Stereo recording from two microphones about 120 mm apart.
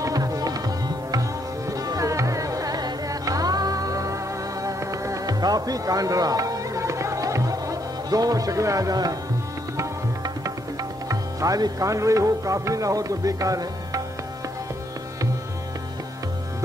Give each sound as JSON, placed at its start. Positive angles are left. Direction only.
{"t": 0.0, "sound": "tabla", "side_deg": -30}
{"t": 1.7, "sound": "music", "side_deg": -30}